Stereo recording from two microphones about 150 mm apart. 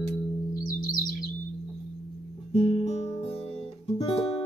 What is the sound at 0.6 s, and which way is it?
Singing bowl, 65° left (ahead or behind).